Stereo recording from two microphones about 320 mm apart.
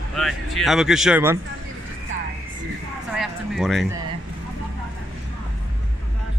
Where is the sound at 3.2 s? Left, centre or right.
Centre.